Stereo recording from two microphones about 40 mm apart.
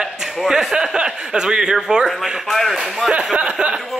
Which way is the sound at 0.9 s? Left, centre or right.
Right.